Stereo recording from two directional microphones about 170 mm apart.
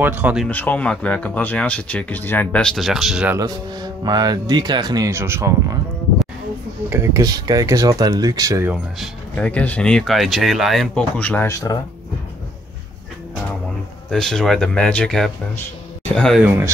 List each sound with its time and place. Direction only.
0.0 s speech: 10° right (ahead or behind)
0.5 s speech: 10° left (ahead or behind)
3.3 s speech: 25° right (ahead or behind)
6.9 s speech: 15° right (ahead or behind)
9.0 s speech: 5° left (ahead or behind)
14.1 s speech: centre (ahead or behind)